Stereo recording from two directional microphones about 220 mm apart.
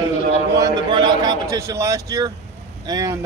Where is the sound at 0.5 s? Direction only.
20° right (ahead or behind).